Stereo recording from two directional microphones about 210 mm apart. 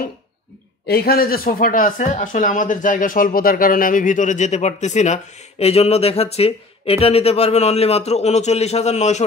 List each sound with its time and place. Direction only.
0.8 s speech: 50° left (ahead or behind); by 9.2 s 30° left (ahead or behind)